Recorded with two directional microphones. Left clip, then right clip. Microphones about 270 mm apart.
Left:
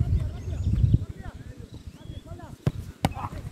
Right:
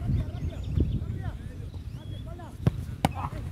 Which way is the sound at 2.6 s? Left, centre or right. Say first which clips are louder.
Right 1 dB; centre.